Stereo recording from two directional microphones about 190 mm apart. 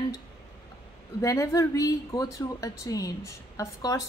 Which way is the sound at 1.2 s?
15° left (ahead or behind).